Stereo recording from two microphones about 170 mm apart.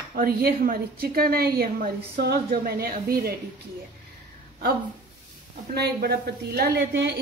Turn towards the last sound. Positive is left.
turn(degrees=-75)  # may be behind; listen again after turning